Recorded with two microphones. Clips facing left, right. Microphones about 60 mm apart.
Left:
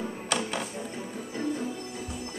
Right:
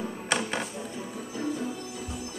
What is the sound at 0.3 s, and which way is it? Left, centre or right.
Music, centre.